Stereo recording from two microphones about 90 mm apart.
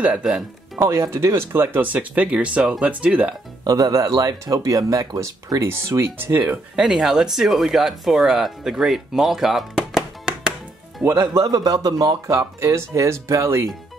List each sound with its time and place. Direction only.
0.0 s speech: 10° right (ahead or behind)
0.7 s speech: 35° right (ahead or behind); by 3.3 s 15° right (ahead or behind)
3.6 s speech: 45° right (ahead or behind); by 6.6 s 20° right (ahead or behind)
6.7 s speech: 5° right (ahead or behind)
11.1 s speech: 40° right (ahead or behind)